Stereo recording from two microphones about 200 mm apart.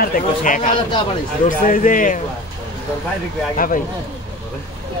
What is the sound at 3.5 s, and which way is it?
Speech, 45° left (ahead or behind).